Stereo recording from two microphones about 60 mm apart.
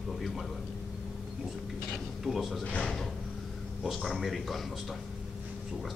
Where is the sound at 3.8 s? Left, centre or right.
Centre.